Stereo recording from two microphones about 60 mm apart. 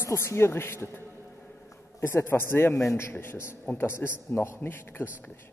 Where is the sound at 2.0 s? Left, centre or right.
Left.